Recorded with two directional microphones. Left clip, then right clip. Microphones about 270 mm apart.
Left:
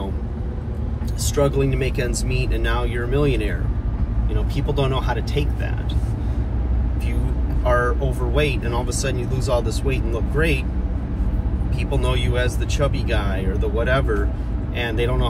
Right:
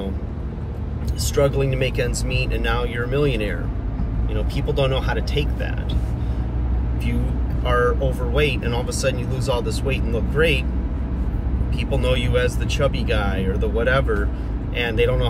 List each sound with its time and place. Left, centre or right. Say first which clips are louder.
1.2 s speech: even; centre
7.6 s speech: right 1 dB; centre
12.0 s speech: right 4 dB; centre